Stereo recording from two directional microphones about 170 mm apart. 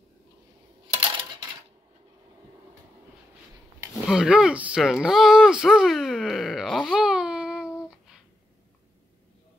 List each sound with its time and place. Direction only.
0.9 s coin: 30° right (ahead or behind)
4.1 s speech: 5° right (ahead or behind)